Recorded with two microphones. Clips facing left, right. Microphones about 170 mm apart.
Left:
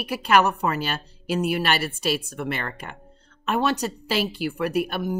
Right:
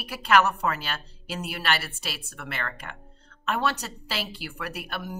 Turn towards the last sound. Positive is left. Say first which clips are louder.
# left 11 dB
turn(degrees=20)  # may be behind; listen again after turning